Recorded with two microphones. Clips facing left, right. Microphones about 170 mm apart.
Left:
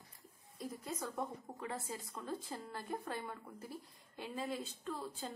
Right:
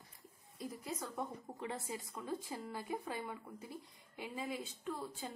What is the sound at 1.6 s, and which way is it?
Speech, 20° right (ahead or behind).